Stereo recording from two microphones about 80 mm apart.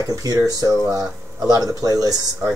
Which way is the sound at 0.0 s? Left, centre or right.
Right.